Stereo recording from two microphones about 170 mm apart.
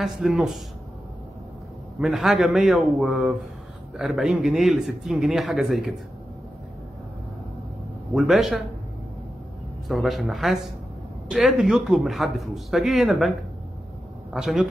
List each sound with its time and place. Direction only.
0.0 s a man's voice: 5° right (ahead or behind)
2.0 s a man's voice: centre (ahead or behind)
8.1 s a man's voice: centre (ahead or behind)
9.8 s a man's voice: centre (ahead or behind)
14.3 s a man's voice: centre (ahead or behind)